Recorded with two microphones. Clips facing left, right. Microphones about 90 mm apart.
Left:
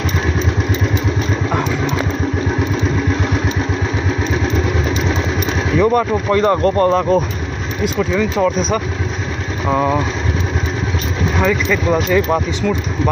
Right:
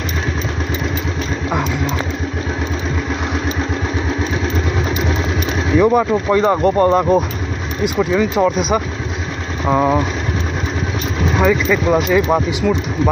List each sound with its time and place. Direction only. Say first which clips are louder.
5.8 s speech: right 1 dB; 5° right (ahead or behind)
11.3 s speech: right 2 dB; 5° right (ahead or behind)